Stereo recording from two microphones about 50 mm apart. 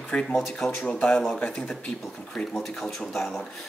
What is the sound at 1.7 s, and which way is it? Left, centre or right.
Speech, centre.